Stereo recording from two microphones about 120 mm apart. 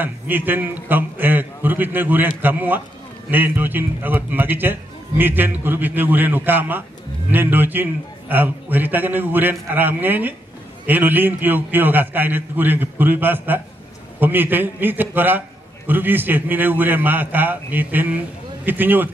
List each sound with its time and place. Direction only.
0.0 s a man's voice: 15° right (ahead or behind)